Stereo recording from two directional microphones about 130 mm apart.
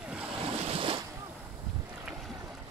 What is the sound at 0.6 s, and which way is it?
Boat, 45° right (ahead or behind).